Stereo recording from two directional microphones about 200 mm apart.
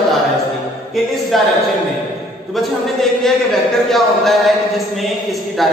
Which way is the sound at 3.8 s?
Centre (ahead or behind).